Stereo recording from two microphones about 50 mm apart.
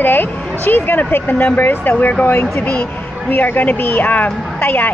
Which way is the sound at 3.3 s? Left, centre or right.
Left.